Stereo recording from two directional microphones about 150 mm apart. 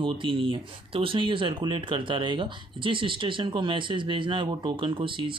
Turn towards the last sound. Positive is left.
turn(degrees=-35)  # may be behind; listen again after turning